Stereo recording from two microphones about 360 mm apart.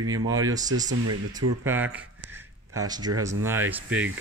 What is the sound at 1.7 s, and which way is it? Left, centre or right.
Speech, centre.